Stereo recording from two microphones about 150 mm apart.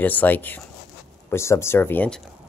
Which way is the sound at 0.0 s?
10° left (ahead or behind).